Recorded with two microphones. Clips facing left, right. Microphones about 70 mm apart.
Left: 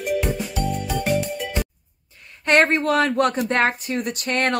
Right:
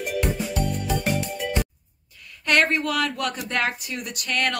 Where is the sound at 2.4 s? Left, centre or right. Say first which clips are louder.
Left 4 dB; left.